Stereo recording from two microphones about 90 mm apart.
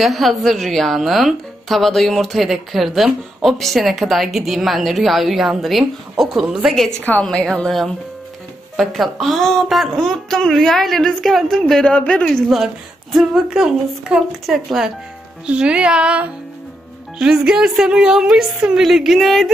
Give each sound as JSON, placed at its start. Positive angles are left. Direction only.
{"t": 0.0, "sound": "a woman's voice", "side_deg": 0}
{"t": 7.0, "sound": "a woman's voice", "side_deg": 20}
{"t": 7.2, "sound": "a woman's voice", "side_deg": 5}